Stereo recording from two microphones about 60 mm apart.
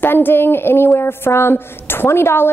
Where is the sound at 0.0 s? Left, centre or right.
Left.